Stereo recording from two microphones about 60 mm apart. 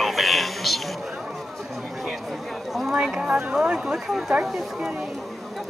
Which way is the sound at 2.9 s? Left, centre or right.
Centre.